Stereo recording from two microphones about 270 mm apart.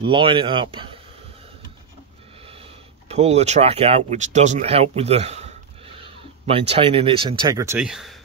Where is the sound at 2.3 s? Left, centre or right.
Right.